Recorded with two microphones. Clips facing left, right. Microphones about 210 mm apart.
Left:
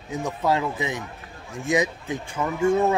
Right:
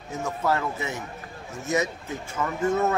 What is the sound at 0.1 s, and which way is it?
A man's voice, 15° left (ahead or behind).